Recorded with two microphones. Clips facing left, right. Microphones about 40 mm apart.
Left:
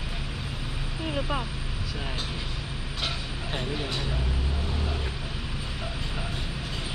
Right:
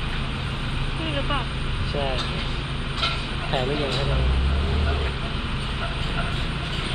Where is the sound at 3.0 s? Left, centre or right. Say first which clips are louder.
Right 6 dB; right.